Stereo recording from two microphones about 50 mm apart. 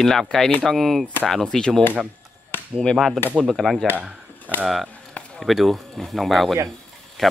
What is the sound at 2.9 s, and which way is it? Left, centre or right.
Speech, centre.